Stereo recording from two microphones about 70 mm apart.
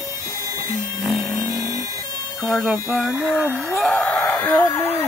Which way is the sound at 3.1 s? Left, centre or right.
Centre.